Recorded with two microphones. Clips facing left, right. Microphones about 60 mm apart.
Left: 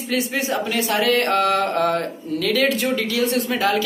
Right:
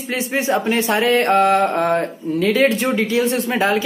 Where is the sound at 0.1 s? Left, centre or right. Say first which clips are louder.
Right 3 dB; right.